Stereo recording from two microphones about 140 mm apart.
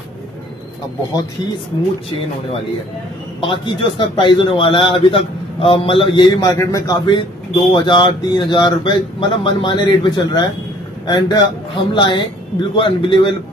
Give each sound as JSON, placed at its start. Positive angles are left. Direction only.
{"t": 3.3, "sound": "a man's voice", "side_deg": 35}